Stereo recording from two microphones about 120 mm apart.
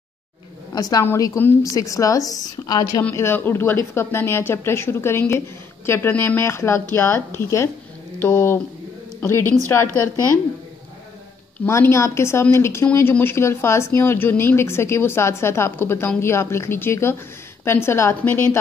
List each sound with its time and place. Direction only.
0.7 s a woman's voice: 30° left (ahead or behind)
3.0 s a woman's voice: 20° left (ahead or behind)
11.6 s a woman's voice: 20° left (ahead or behind)